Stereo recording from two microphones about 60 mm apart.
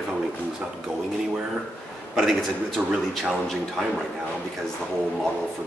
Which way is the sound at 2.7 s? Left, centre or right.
Centre.